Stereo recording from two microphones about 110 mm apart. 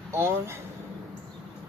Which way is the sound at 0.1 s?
25° right (ahead or behind).